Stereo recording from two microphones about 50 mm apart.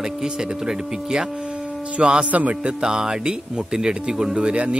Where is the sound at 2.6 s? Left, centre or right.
Centre.